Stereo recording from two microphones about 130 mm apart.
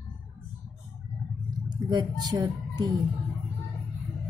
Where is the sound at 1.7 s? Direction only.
35° right (ahead or behind).